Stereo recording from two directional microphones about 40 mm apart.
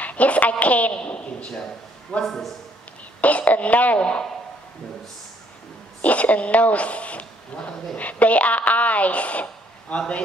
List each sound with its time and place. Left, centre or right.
0.0 s a man's voice: left
2.2 s a man's voice: centre
3.2 s a woman's voice: left
6.0 s a woman's voice: left